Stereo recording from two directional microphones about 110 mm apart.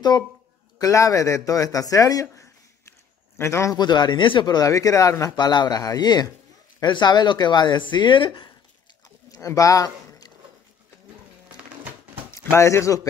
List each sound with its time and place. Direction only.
0.7 s speech: 30° left (ahead or behind)
3.7 s a man's voice: 40° left (ahead or behind)
4.6 s speech: 30° left (ahead or behind)
5.3 s a man's voice: 40° left (ahead or behind)
9.3 s a sound: 30° left (ahead or behind)
12.3 s speech: 25° left (ahead or behind)